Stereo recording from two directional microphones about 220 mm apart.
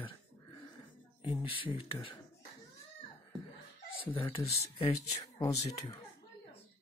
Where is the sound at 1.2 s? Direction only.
25° left (ahead or behind).